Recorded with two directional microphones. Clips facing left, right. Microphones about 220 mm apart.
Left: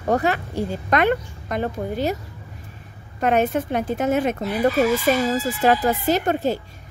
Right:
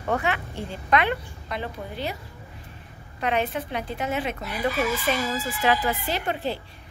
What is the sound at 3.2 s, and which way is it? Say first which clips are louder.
A woman's voice: left 7 dB; 45° left (ahead or behind).